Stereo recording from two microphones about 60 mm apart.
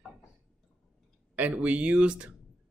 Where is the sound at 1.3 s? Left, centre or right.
Right.